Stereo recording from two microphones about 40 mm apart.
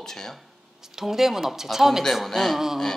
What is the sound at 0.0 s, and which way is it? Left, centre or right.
Speech, centre.